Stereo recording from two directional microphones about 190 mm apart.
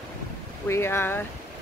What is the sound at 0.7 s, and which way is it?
Speech, 10° left (ahead or behind).